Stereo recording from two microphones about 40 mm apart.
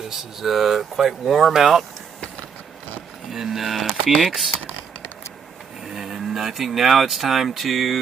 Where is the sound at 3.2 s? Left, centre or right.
Centre.